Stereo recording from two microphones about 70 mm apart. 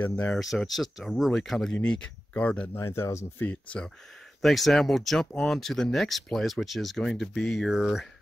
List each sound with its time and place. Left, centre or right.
0.0 s speech: left
0.4 s speech: centre
1.8 s speech: centre
2.7 s speech: left
3.3 s speech: left
4.4 s speech: centre